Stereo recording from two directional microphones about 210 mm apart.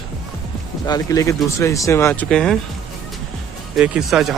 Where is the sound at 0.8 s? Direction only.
15° left (ahead or behind).